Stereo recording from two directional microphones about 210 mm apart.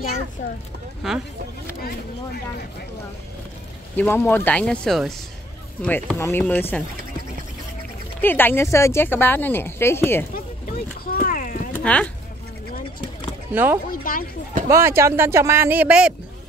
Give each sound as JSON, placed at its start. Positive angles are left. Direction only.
{"t": 1.0, "sound": "speech", "side_deg": 0}
{"t": 3.9, "sound": "speech", "side_deg": 10}
{"t": 8.2, "sound": "speech", "side_deg": 10}
{"t": 11.1, "sound": "a sound", "side_deg": 40}
{"t": 11.7, "sound": "speech", "side_deg": 5}
{"t": 13.5, "sound": "speech", "side_deg": -10}
{"t": 13.8, "sound": "speech", "side_deg": 40}
{"t": 14.7, "sound": "speech", "side_deg": -10}